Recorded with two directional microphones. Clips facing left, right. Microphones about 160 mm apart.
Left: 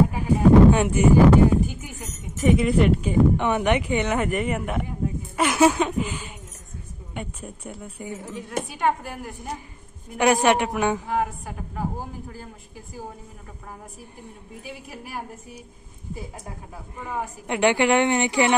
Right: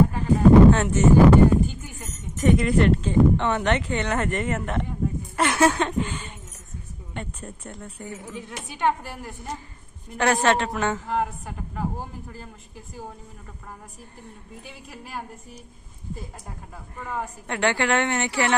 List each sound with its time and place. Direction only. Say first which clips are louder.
0.1 s a sound: right 1 dB; 10° left (ahead or behind)
1.7 s a woman's voice: left 1 dB; 15° left (ahead or behind)
10.0 s a woman's voice: left 2 dB; 15° left (ahead or behind)
14.2 s a woman's voice: left 3 dB; 10° left (ahead or behind)
16.9 s a woman's voice: left 1 dB; 15° left (ahead or behind)